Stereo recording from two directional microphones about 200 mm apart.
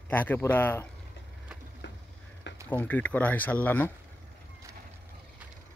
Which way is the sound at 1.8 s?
65° left (ahead or behind).